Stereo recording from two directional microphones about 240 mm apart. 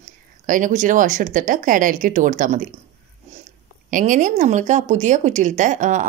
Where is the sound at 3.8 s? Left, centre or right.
Right.